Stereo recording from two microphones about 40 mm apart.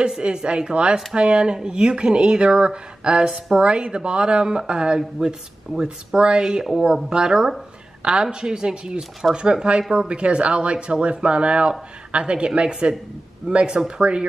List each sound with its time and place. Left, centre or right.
0.2 s a woman's voice: right
6.6 s a woman's voice: centre; by 13.7 s right
13.7 s a woman's voice: centre